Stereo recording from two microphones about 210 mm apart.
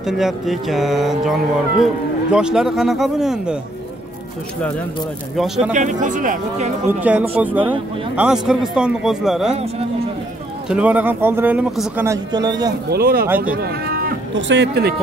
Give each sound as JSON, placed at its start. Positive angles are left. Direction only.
{"t": 0.0, "sound": "speech", "side_deg": 0}
{"t": 5.7, "sound": "speech", "side_deg": -35}
{"t": 6.9, "sound": "speech", "side_deg": -5}
{"t": 9.5, "sound": "speech", "side_deg": -30}
{"t": 10.7, "sound": "speech", "side_deg": -5}
{"t": 12.1, "sound": "speech", "side_deg": -20}
{"t": 12.9, "sound": "speech", "side_deg": -45}